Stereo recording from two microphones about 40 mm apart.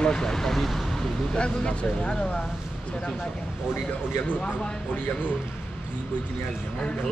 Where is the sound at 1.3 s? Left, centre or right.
Left.